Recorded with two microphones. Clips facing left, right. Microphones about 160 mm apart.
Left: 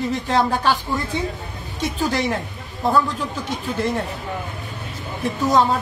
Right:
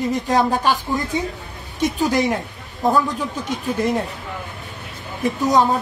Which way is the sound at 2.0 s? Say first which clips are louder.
Right 1 dB; 15° right (ahead or behind).